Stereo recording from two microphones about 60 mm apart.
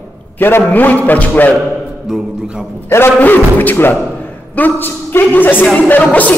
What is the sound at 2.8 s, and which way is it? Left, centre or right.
A man's voice, left.